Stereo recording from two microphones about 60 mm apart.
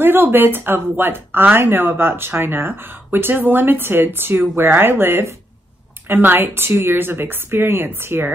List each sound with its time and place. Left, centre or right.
0.0 s speech: right